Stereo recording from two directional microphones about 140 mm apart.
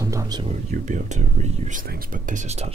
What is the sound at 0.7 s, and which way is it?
Speech, 60° right (ahead or behind).